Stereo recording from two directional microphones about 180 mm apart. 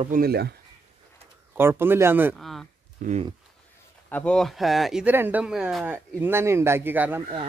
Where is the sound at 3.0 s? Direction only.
40° right (ahead or behind).